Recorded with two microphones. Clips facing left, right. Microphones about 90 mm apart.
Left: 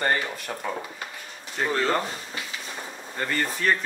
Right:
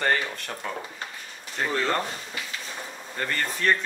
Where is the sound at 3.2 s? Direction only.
5° left (ahead or behind).